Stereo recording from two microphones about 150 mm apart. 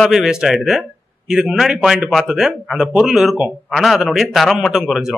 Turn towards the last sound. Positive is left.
turn(degrees=0)  # may be behind; listen again after turning